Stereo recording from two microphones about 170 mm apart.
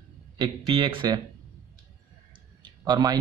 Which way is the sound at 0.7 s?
30° right (ahead or behind).